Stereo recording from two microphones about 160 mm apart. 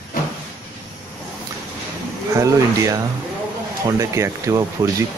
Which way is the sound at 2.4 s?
20° right (ahead or behind).